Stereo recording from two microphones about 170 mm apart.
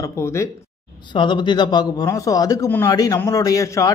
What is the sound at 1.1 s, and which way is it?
A man's voice, 30° left (ahead or behind).